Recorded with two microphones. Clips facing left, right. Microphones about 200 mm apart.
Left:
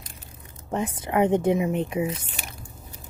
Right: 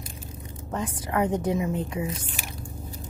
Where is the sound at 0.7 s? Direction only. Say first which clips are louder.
Left 3 dB; 25° left (ahead or behind).